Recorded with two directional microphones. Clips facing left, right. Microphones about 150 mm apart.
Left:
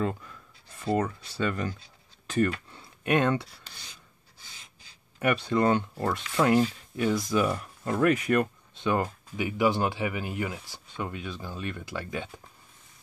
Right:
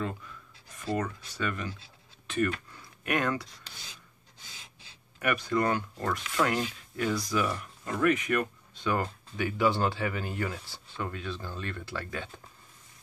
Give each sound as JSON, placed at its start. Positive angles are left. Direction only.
{"t": 0.9, "sound": "speech", "side_deg": 30}
{"t": 5.2, "sound": "speech", "side_deg": 25}